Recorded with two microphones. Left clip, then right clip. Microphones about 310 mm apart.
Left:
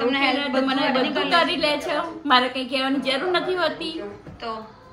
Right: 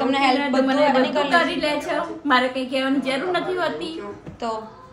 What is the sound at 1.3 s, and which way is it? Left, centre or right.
A woman's voice, centre.